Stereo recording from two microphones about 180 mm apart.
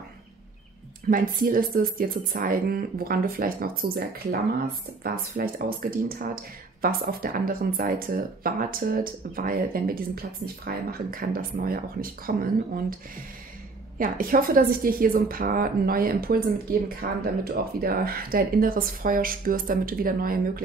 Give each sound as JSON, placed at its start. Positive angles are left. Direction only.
{"t": 1.1, "sound": "speech", "side_deg": -50}
{"t": 13.9, "sound": "speech", "side_deg": -50}